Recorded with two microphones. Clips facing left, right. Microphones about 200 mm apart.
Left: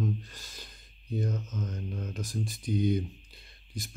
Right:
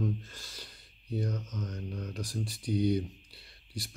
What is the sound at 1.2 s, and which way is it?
Speech, 20° left (ahead or behind).